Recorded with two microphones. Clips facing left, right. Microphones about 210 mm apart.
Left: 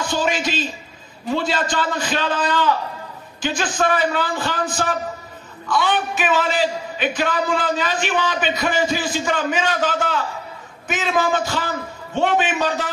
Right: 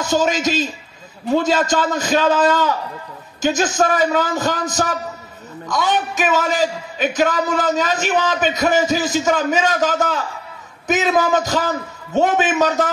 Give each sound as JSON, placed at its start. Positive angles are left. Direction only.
{"t": 0.0, "sound": "a man's voice", "side_deg": -45}